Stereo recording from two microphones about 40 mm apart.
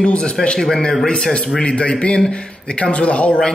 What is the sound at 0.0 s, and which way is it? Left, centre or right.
Speech, left.